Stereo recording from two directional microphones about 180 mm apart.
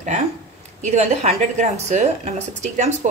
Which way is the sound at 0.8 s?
35° right (ahead or behind).